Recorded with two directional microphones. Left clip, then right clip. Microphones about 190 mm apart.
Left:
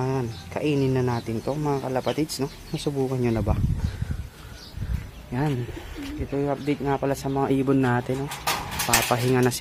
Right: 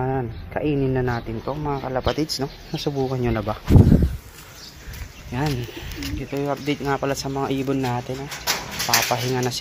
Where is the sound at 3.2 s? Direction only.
15° left (ahead or behind).